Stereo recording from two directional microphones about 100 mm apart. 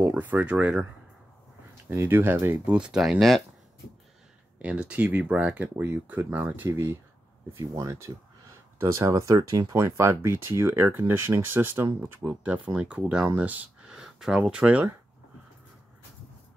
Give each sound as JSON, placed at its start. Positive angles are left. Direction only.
{"t": 0.0, "sound": "speech", "side_deg": -15}
{"t": 1.9, "sound": "speech", "side_deg": -20}
{"t": 4.6, "sound": "speech", "side_deg": -10}